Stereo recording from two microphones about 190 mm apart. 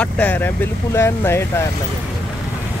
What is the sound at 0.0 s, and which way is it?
Speech, 10° left (ahead or behind).